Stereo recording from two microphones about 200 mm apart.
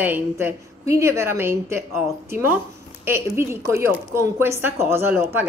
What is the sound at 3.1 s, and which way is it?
Speech, 15° right (ahead or behind).